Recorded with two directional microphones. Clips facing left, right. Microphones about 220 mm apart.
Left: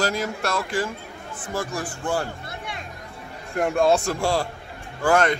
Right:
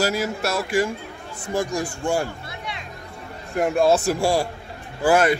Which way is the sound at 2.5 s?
50° left (ahead or behind).